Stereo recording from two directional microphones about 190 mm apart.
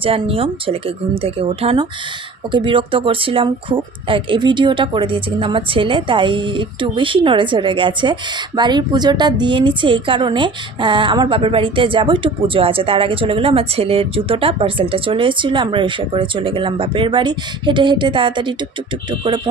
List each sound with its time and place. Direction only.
0.0 s speech: 30° right (ahead or behind)